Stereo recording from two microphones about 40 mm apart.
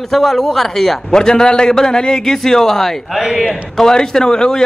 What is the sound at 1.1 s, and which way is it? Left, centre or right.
A man's voice, centre.